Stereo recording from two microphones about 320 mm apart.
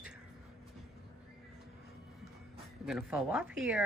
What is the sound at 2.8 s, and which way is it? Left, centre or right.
Speech, centre.